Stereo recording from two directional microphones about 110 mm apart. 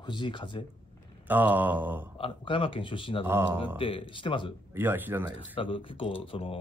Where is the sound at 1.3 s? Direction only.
15° right (ahead or behind).